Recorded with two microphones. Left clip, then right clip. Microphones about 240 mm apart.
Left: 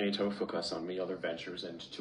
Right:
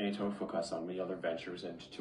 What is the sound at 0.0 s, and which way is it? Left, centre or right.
Speech, centre.